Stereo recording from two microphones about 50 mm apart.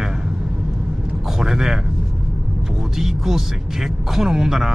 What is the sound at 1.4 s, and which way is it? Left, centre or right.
Speech, centre.